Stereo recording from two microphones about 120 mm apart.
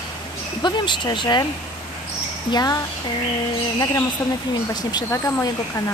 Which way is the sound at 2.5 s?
30° left (ahead or behind).